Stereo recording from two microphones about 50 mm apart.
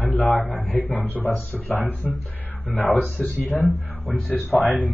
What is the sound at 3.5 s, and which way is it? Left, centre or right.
Speech, left.